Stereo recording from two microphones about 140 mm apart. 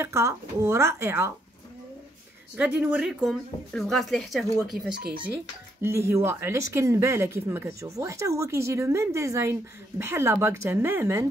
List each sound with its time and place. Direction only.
0.0 s speech: 20° right (ahead or behind)
2.5 s speech: 10° right (ahead or behind)
5.8 s speech: 20° right (ahead or behind)